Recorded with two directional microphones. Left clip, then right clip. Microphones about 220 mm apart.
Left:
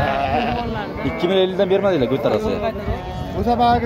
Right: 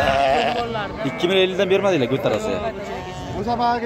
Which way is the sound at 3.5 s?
30° left (ahead or behind).